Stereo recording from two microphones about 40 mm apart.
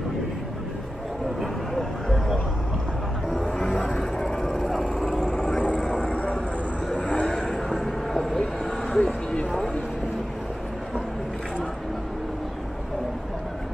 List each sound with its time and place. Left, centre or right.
1.4 s vehicle: centre
3.4 s music: centre
4.2 s vehicle: centre
5.6 s vehicle: left
7.4 s vehicle: centre
8.9 s a sound: centre